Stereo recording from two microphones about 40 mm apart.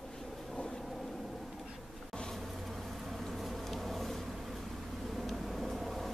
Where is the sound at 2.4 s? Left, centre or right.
Centre.